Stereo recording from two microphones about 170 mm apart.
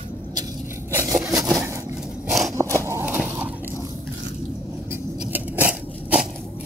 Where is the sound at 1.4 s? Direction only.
Centre (ahead or behind).